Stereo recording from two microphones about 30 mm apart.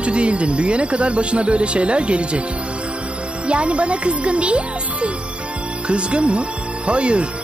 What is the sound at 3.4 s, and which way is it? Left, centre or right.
Speech, right.